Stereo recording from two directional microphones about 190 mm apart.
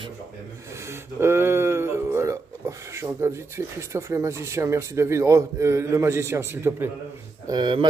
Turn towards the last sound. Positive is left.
turn(degrees=-25)  # may be behind; listen again after turning